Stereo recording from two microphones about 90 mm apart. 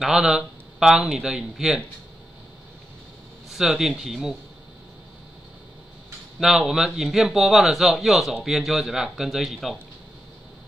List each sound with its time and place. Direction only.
0.0 s speech: 5° right (ahead or behind)
3.4 s a man's voice: 5° right (ahead or behind)
6.4 s a man's voice: 5° right (ahead or behind)